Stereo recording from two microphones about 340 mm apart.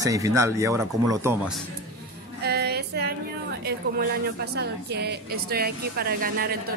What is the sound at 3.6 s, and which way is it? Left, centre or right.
A woman's voice, right.